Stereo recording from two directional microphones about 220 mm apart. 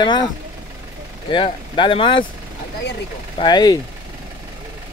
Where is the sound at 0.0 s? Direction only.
20° left (ahead or behind).